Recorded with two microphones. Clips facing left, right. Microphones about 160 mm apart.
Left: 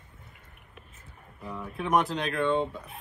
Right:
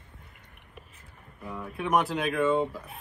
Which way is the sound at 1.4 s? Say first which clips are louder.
Even; centre (ahead or behind).